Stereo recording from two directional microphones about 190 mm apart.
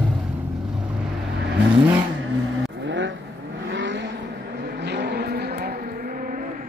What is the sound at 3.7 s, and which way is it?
Vehicle, 75° right (ahead or behind).